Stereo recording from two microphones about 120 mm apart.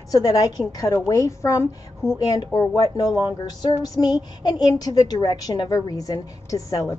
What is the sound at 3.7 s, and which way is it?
A woman's voice, 30° left (ahead or behind).